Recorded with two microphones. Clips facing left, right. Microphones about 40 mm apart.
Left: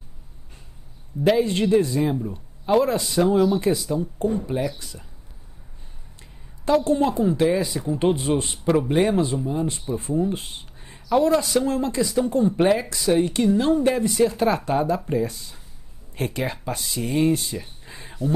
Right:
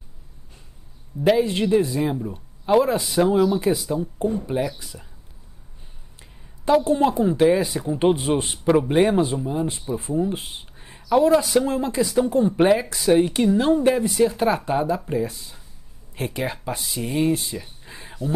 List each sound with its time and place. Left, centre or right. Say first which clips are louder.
1.2 s a man's voice: right 1 dB; centre
6.9 s speech: right 1 dB; centre
9.1 s speech: right 1 dB; centre
9.4 s speech: even; centre
12.7 s a man's voice: right 2 dB; centre
13.0 s a man's voice: right 1 dB; right
17.6 s a sound: even; centre